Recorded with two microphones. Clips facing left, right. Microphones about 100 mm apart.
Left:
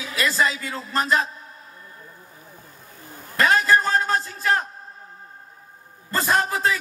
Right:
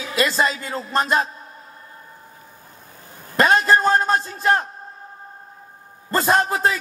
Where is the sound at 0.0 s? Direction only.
20° right (ahead or behind).